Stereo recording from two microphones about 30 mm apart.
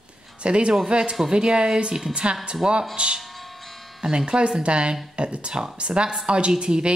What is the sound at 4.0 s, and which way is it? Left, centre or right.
A woman's voice, right.